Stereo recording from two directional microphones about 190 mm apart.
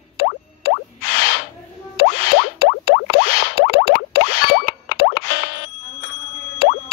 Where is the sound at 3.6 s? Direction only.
55° left (ahead or behind).